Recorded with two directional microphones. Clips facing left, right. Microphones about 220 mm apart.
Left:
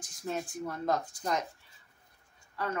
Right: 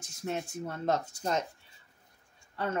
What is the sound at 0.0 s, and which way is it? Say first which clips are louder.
Speech: right 1 dB; 25° right (ahead or behind).